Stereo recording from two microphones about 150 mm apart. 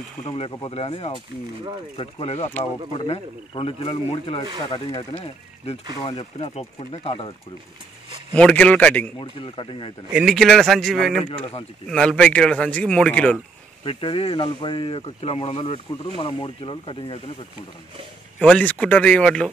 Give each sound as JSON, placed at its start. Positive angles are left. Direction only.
{"t": 0.3, "sound": "speech", "side_deg": 30}
{"t": 5.9, "sound": "speech", "side_deg": 35}
{"t": 8.4, "sound": "speech", "side_deg": 10}
{"t": 9.2, "sound": "speech", "side_deg": 35}
{"t": 10.1, "sound": "a man's voice", "side_deg": 0}
{"t": 13.8, "sound": "speech", "side_deg": 40}
{"t": 18.6, "sound": "speech", "side_deg": 10}